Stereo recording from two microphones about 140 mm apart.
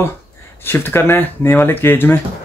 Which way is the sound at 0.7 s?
15° left (ahead or behind).